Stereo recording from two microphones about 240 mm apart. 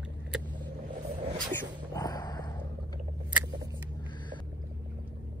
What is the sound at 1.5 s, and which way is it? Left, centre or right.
Sneeze, centre.